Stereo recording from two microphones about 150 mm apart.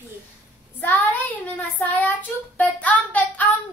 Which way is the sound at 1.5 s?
10° left (ahead or behind).